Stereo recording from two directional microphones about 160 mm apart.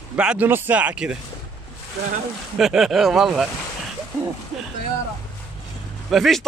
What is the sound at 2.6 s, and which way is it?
Speech, centre (ahead or behind).